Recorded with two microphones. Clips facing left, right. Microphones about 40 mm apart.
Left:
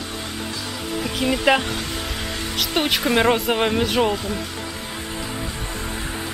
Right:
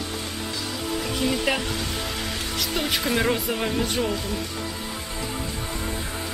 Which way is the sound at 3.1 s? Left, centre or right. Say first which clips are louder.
Left 6 dB; left.